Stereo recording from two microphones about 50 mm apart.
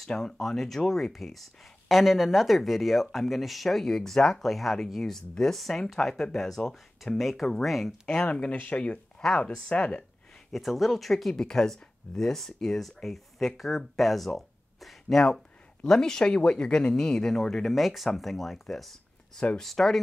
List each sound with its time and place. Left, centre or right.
0.0 s speech: centre
8.3 s speech: left
10.5 s speech: centre